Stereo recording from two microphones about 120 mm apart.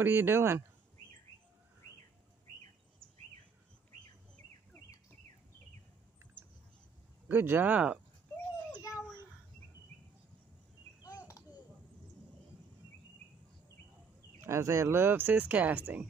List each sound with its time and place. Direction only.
0.0 s speech: 20° right (ahead or behind)
7.2 s speech: 20° right (ahead or behind)
11.0 s a sound: 30° left (ahead or behind)
14.4 s speech: 25° right (ahead or behind)